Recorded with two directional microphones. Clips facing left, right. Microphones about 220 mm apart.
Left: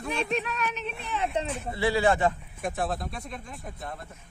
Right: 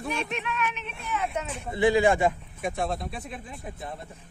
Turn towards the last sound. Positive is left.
turn(degrees=-5)  # may be behind; listen again after turning